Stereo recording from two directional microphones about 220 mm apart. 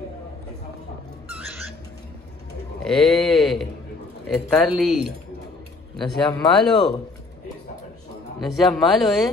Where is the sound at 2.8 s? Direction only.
Centre (ahead or behind).